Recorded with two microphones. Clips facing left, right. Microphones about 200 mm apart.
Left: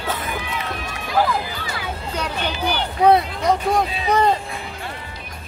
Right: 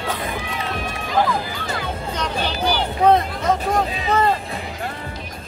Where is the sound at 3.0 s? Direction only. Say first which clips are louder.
Left 1 dB; 15° left (ahead or behind).